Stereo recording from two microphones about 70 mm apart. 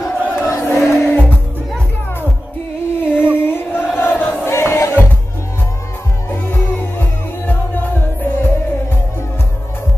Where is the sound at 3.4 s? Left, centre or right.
Left.